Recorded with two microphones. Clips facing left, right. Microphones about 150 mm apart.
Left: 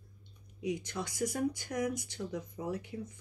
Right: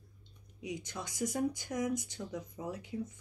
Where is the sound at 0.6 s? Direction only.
20° right (ahead or behind).